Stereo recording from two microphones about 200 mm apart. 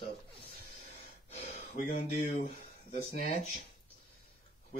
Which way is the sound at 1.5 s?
40° left (ahead or behind).